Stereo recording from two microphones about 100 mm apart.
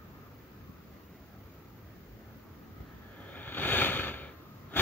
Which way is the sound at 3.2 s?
15° left (ahead or behind).